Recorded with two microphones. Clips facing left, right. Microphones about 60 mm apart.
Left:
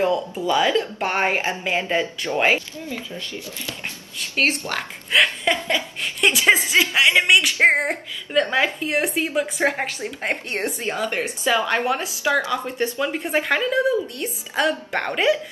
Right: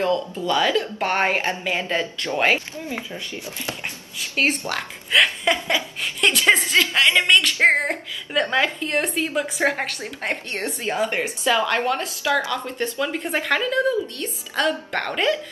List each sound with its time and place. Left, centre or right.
0.0 s a woman's voice: centre
4.6 s a woman's voice: centre
7.8 s a woman's voice: centre
11.0 s a woman's voice: right
11.2 s a woman's voice: centre